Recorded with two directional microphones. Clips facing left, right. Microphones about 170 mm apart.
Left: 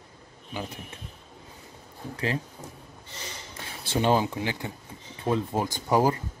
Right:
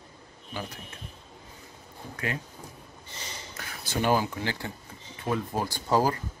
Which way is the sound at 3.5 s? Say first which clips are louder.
Left 3 dB; 25° left (ahead or behind).